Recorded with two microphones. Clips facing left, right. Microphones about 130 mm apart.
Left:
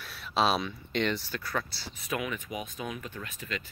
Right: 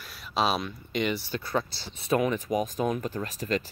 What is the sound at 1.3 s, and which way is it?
Speech, 20° right (ahead or behind).